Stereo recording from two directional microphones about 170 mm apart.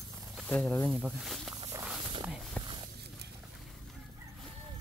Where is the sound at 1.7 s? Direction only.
10° right (ahead or behind).